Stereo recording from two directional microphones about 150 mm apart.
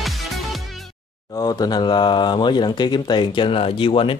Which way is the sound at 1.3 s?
25° left (ahead or behind).